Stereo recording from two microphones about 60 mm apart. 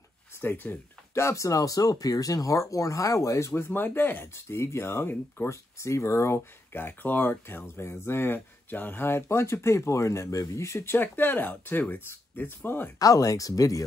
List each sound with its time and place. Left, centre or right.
0.4 s speech: left
1.1 s speech: left
5.8 s speech: left
11.0 s speech: left
13.0 s speech: left